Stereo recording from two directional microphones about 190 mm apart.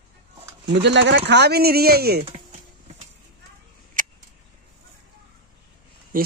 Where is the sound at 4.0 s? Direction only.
45° right (ahead or behind).